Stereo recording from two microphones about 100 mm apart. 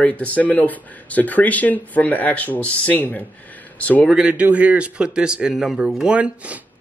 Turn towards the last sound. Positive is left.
turn(degrees=-10)  # may be behind; listen again after turning